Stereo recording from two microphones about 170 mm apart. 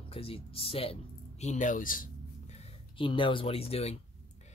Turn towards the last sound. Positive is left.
turn(degrees=35)  # may be behind; listen again after turning